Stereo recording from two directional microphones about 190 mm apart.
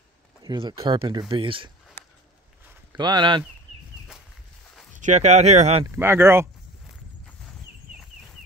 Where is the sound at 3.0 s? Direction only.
25° right (ahead or behind).